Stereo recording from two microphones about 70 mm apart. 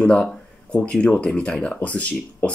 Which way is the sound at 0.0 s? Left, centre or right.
Centre.